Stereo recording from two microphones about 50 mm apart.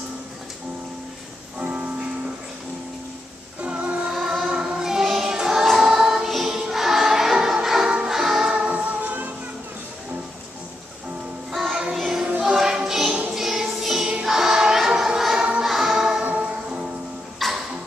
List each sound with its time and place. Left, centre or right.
1.6 s music: right
3.6 s music: right
4.1 s music: centre
8.7 s music: right
11.5 s music: centre
15.6 s choir: centre
16.3 s music: right
17.4 s music: centre